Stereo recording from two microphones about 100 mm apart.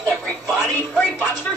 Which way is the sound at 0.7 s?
20° left (ahead or behind).